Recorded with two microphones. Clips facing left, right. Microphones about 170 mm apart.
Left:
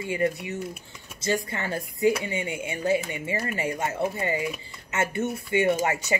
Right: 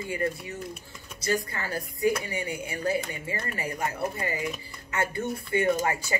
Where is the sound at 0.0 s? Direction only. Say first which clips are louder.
Left 4 dB; 20° left (ahead or behind).